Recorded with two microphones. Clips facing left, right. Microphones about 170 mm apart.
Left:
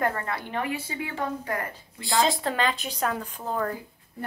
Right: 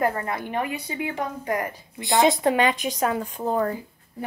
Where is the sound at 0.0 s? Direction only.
15° right (ahead or behind).